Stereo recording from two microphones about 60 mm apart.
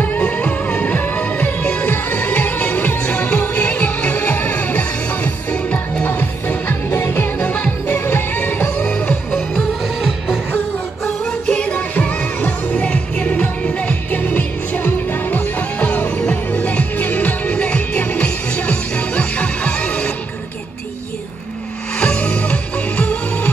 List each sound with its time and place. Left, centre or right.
0.0 s music: left
3.2 s music: centre
6.0 s music: left
7.9 s music: left
10.0 s music: centre
11.2 s music: centre
21.9 s music: centre